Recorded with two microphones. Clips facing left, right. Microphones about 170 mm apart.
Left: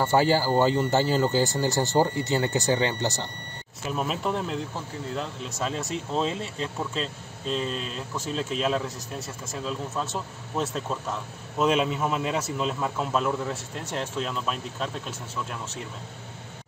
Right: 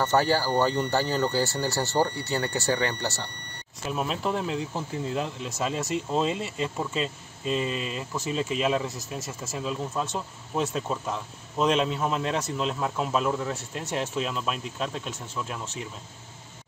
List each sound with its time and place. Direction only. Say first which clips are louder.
0.0 s speech: left 2 dB; 15° left (ahead or behind)
3.9 s speech: even; centre (ahead or behind)